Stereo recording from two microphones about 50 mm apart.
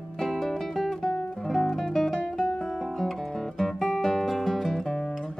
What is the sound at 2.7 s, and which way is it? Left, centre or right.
Guitar, centre.